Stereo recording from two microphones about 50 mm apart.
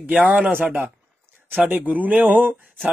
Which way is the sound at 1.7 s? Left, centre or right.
Right.